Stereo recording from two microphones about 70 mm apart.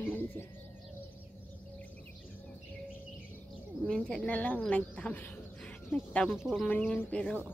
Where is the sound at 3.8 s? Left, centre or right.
Centre.